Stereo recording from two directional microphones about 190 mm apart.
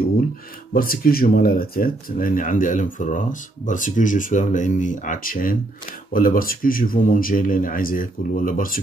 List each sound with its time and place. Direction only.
0.7 s speech: 50° left (ahead or behind)